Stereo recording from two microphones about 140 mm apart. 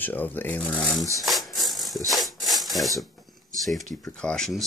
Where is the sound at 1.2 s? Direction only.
Centre (ahead or behind).